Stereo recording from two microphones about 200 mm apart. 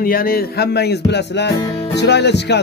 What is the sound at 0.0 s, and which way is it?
Music, 45° left (ahead or behind).